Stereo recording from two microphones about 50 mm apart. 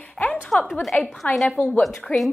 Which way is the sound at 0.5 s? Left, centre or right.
Centre.